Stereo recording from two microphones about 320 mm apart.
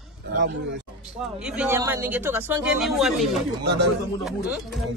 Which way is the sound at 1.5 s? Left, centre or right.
Centre.